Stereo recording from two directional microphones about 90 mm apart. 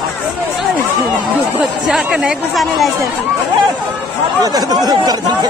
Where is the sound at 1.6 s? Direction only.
5° right (ahead or behind).